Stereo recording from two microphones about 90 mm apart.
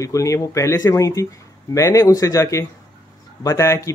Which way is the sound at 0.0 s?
35° left (ahead or behind).